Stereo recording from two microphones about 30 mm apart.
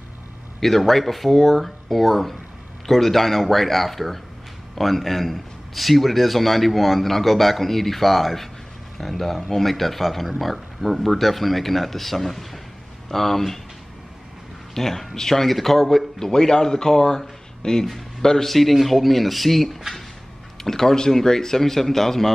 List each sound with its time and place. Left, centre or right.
0.6 s a man's voice: centre
14.7 s a man's voice: centre
16.2 s a man's voice: centre
20.6 s speech: centre